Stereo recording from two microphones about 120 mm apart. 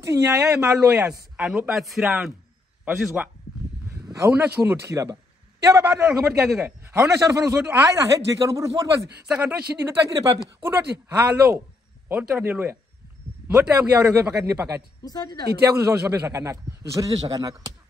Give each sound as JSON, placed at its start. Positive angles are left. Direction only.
{"t": 0.0, "sound": "a man's voice", "side_deg": -25}
{"t": 0.4, "sound": "a man's voice", "side_deg": -10}
{"t": 3.9, "sound": "a man's voice", "side_deg": -25}
{"t": 4.9, "sound": "a man's voice", "side_deg": -30}
{"t": 6.0, "sound": "a man's voice", "side_deg": -5}
{"t": 6.9, "sound": "a man's voice", "side_deg": -25}
{"t": 9.1, "sound": "a man's voice", "side_deg": -10}
{"t": 9.8, "sound": "a man's voice", "side_deg": -25}
{"t": 15.0, "sound": "speech", "side_deg": 35}
{"t": 15.7, "sound": "a man's voice", "side_deg": -15}